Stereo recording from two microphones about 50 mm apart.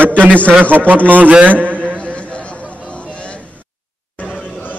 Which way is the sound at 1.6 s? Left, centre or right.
Right.